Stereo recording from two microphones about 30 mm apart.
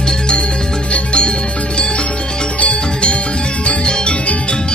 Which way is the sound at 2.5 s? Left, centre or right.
Left.